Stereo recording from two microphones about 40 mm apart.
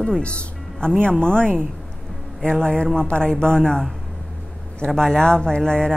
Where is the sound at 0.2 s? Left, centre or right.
Left.